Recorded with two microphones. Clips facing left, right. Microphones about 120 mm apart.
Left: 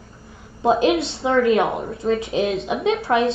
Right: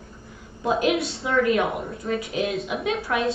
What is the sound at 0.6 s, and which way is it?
A woman's voice, 30° left (ahead or behind).